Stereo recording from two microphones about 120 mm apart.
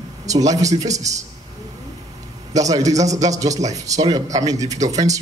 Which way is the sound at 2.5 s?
30° right (ahead or behind).